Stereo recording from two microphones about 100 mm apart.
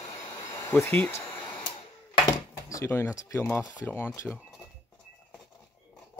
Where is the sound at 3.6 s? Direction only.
25° left (ahead or behind).